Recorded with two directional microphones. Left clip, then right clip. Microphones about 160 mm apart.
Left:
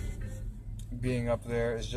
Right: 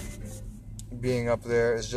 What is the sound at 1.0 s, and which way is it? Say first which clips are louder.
Speech: right 5 dB; 15° right (ahead or behind).